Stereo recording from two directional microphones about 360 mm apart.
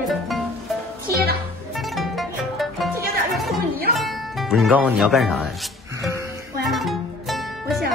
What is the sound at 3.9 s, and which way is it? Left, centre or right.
Speech, centre.